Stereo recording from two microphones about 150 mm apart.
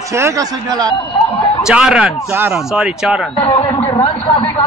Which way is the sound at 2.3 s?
20° right (ahead or behind).